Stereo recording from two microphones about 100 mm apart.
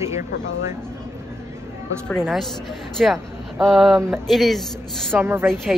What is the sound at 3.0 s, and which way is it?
A woman's voice, centre (ahead or behind).